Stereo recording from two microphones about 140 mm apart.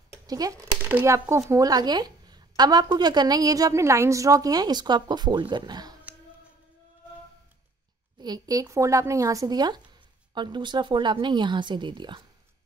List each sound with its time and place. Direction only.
0.1 s speech: 25° right (ahead or behind)
8.2 s speech: 25° right (ahead or behind)